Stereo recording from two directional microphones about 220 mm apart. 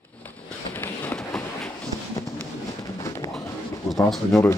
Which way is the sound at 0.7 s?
10° left (ahead or behind).